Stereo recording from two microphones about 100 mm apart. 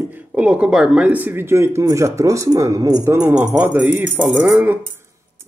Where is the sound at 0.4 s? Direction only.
10° right (ahead or behind); by 3.0 s 35° right (ahead or behind).